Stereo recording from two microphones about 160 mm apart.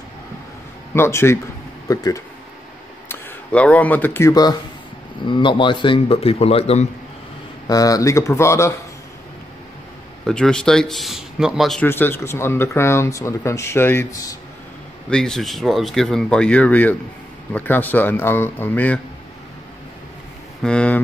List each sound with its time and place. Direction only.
0.9 s speech: 15° left (ahead or behind)
3.1 s speech: 10° left (ahead or behind); by 6.9 s 40° left (ahead or behind)
7.6 s speech: 20° left (ahead or behind)
10.2 s speech: 5° left (ahead or behind)
11.8 s speech: 15° left (ahead or behind)
15.0 s speech: 5° left (ahead or behind)
20.6 s speech: 5° left (ahead or behind)